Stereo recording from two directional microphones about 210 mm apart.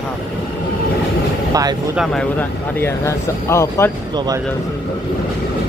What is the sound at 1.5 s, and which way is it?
Speech, 15° right (ahead or behind).